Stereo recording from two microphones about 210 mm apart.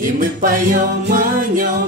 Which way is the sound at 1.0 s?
40° right (ahead or behind).